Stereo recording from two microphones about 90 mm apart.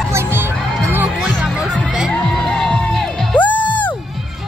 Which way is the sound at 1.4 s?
10° right (ahead or behind).